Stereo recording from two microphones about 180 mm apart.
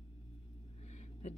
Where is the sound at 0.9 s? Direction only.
40° left (ahead or behind).